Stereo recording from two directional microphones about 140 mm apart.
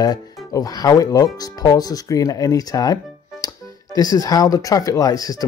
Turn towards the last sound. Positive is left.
turn(degrees=25)  # may be behind; listen again after turning